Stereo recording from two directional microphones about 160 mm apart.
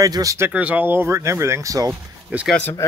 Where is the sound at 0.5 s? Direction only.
10° right (ahead or behind).